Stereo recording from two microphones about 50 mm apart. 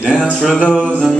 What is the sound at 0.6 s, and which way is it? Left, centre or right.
Music, centre.